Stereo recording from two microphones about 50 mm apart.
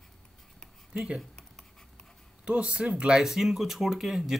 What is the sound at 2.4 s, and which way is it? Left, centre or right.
Speech, right.